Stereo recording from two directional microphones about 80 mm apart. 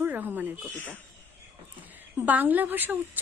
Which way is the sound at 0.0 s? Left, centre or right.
Right.